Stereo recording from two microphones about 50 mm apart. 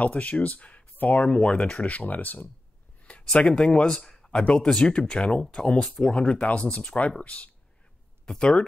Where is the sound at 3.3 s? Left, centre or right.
Centre.